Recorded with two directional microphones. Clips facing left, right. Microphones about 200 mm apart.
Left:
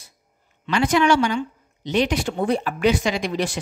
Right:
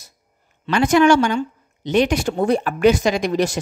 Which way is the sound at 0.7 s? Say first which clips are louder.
Right 4 dB; 50° right (ahead or behind).